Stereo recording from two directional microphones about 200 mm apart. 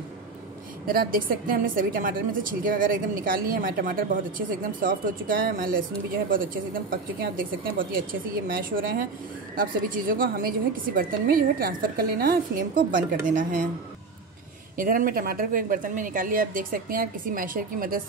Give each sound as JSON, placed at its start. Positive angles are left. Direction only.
{"t": 0.8, "sound": "a woman's voice", "side_deg": -45}
{"t": 14.8, "sound": "a woman's voice", "side_deg": -45}